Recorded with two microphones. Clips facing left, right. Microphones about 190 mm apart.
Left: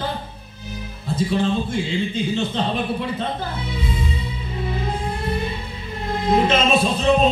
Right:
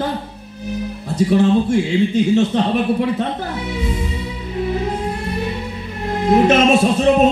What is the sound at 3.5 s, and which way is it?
Music, 75° right (ahead or behind).